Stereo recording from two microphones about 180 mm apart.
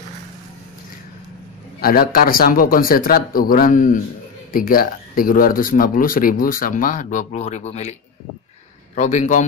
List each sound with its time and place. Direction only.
1.8 s speech: 55° left (ahead or behind); by 7.9 s 40° left (ahead or behind)
8.9 s a man's voice: 40° left (ahead or behind)